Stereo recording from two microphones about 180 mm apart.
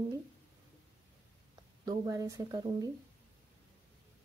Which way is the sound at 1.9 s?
20° right (ahead or behind).